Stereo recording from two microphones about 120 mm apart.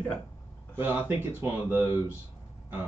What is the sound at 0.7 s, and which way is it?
Speech, 20° right (ahead or behind).